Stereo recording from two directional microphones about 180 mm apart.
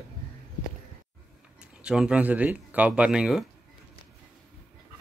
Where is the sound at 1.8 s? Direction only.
5° right (ahead or behind).